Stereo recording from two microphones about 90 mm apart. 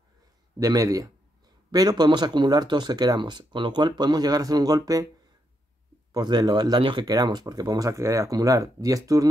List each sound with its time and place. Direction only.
0.6 s speech: 40° right (ahead or behind)
6.1 s speech: 50° right (ahead or behind)
6.8 s speech: 60° right (ahead or behind); by 7.9 s 45° right (ahead or behind)
7.9 s speech: 35° right (ahead or behind)